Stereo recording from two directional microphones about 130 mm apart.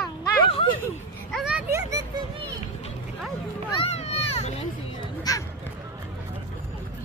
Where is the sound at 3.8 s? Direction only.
55° left (ahead or behind).